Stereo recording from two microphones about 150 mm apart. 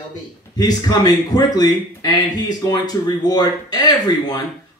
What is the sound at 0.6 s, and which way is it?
Speech, 25° left (ahead or behind).